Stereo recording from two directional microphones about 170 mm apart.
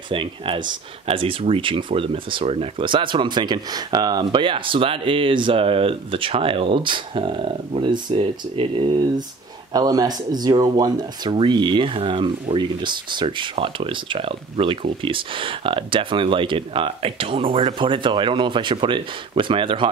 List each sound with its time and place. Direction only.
0.1 s speech: 30° right (ahead or behind)